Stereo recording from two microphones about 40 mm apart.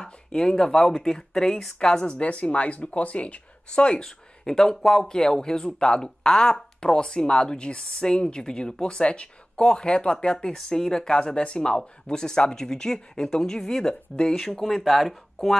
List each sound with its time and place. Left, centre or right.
0.0 s speech: centre
1.8 s speech: left
4.5 s speech: centre
14.6 s speech: centre